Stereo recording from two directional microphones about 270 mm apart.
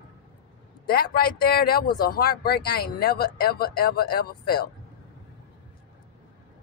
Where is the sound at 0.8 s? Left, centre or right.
Left.